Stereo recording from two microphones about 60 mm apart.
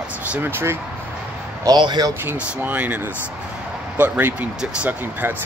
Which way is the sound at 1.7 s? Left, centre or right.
Right.